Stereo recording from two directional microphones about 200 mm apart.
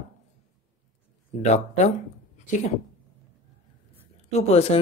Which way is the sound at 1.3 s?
35° left (ahead or behind).